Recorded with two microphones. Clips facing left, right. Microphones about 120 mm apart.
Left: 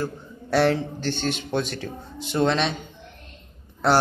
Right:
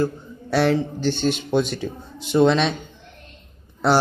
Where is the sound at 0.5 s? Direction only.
Centre (ahead or behind).